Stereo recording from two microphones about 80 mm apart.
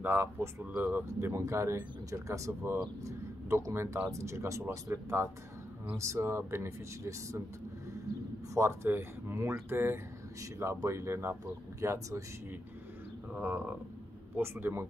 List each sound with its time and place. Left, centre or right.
0.0 s speech: right
1.0 s speech: right
8.5 s speech: right
10.4 s speech: right
13.4 s speech: right